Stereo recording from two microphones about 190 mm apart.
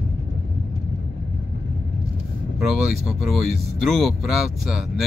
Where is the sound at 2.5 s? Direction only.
Centre (ahead or behind).